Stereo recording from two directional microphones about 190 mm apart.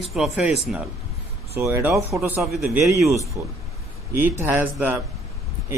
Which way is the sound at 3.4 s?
15° right (ahead or behind).